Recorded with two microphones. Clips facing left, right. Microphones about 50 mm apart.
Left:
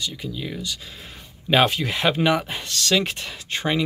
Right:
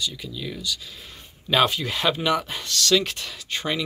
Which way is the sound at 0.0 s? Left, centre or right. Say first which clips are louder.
Left 1 dB; left.